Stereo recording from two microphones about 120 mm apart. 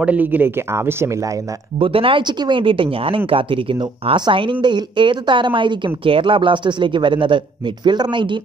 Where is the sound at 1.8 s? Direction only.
50° right (ahead or behind).